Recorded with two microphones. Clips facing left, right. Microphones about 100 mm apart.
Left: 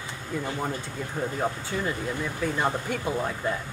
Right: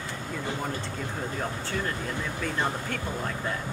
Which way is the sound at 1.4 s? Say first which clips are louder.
Left 2 dB; 10° left (ahead or behind).